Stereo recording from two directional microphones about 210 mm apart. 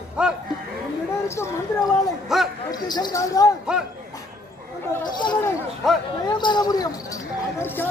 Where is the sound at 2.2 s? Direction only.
Centre (ahead or behind).